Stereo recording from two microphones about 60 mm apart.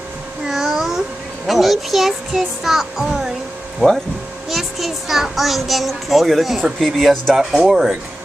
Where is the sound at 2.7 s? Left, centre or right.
Centre.